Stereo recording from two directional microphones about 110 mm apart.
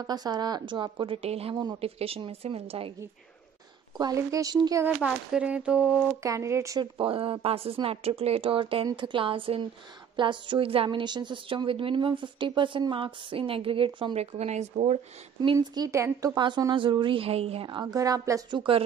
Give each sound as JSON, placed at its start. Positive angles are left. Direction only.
{"t": 0.0, "sound": "a woman's voice", "side_deg": -40}
{"t": 1.5, "sound": "speech", "side_deg": -40}
{"t": 1.8, "sound": "speech", "side_deg": -60}
{"t": 4.0, "sound": "speech", "side_deg": -30}
{"t": 5.3, "sound": "a sound", "side_deg": -10}
{"t": 6.2, "sound": "speech", "side_deg": -30}
{"t": 6.8, "sound": "a woman's voice", "side_deg": -55}
{"t": 14.1, "sound": "speech", "side_deg": -75}
{"t": 15.5, "sound": "a woman's voice", "side_deg": -35}
{"t": 17.9, "sound": "speech", "side_deg": -30}
{"t": 18.5, "sound": "a woman's voice", "side_deg": -50}